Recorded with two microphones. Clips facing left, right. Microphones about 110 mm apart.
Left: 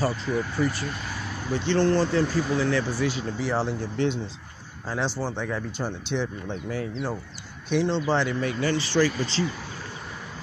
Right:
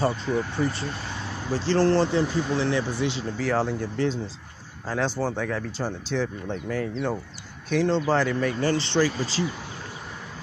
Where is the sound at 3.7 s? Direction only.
40° right (ahead or behind).